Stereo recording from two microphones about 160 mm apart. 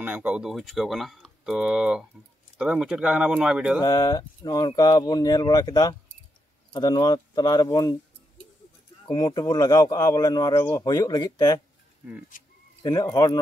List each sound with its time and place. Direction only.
0.0 s speech: 10° right (ahead or behind)
3.8 s speech: 25° left (ahead or behind)
9.0 s speech: 25° left (ahead or behind)
12.0 s speech: 10° right (ahead or behind)
12.8 s speech: 20° left (ahead or behind)